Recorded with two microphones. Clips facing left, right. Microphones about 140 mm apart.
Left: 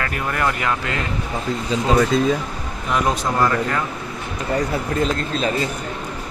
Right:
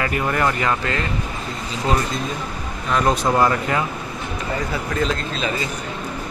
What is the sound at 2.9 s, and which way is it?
Speech, 10° left (ahead or behind).